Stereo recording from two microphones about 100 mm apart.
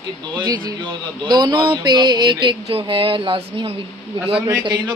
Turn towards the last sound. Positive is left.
turn(degrees=-45)  # may be behind; listen again after turning